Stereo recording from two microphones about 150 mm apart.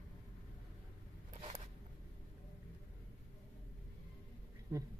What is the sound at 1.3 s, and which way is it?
Zipper, 45° right (ahead or behind).